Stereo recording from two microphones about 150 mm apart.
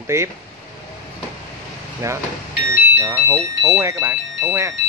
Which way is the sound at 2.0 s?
20° right (ahead or behind).